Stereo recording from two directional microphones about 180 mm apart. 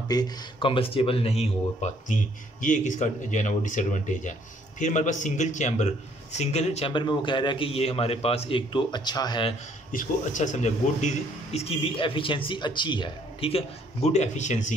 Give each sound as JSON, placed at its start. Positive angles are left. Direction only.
{"t": 0.1, "sound": "speech", "side_deg": 25}
{"t": 9.9, "sound": "speech", "side_deg": 40}